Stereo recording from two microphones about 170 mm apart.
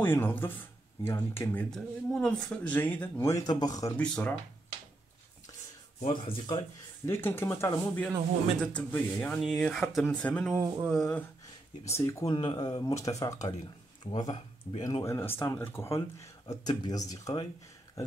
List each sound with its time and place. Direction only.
0.0 s speech: 10° left (ahead or behind)
3.9 s speech: 5° left (ahead or behind)
5.9 s speech: 30° left (ahead or behind)
7.1 s speech: 15° left (ahead or behind)
11.8 s speech: 20° left (ahead or behind)